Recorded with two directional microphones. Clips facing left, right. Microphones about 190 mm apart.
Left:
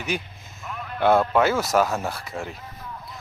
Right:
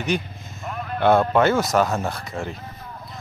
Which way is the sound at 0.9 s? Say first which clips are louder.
Right 2 dB; 5° left (ahead or behind).